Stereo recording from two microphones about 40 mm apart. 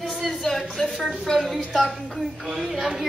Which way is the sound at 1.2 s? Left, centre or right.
Centre.